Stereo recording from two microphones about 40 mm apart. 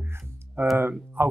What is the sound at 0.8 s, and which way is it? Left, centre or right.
Speech, right.